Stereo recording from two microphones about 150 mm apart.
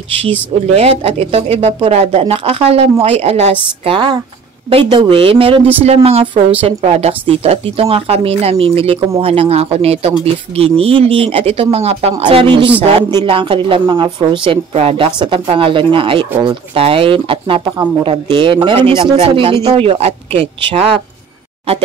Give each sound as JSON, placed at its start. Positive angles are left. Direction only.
{"t": 0.7, "sound": "speech", "side_deg": -45}